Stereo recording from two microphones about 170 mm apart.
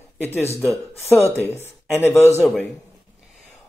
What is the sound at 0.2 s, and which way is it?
Speech, 15° left (ahead or behind).